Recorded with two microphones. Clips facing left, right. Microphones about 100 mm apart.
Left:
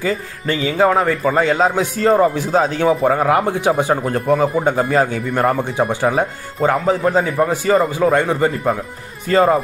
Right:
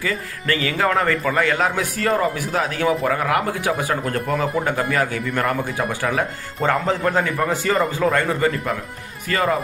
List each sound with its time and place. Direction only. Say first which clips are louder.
0.0 s a man's voice: left 4 dB; 20° left (ahead or behind)
6.6 s a man's voice: left 4 dB; 10° left (ahead or behind); by 9.6 s 30° left (ahead or behind)